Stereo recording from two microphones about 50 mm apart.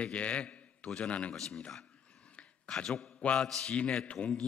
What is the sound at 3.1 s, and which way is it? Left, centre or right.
Mantra, left.